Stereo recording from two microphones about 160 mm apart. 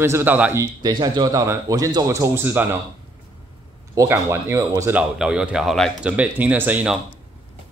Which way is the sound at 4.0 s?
15° right (ahead or behind).